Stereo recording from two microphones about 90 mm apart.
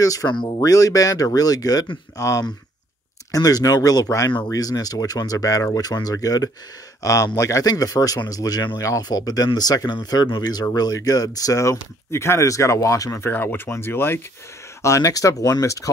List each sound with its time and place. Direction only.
0.0 s speech: 40° left (ahead or behind)
0.3 s speech: 60° left (ahead or behind)
0.6 s speech: 40° left (ahead or behind)
13.3 s speech: 20° left (ahead or behind)
14.8 s speech: 35° left (ahead or behind)